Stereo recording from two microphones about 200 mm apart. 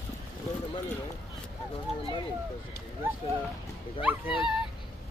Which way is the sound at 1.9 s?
30° left (ahead or behind).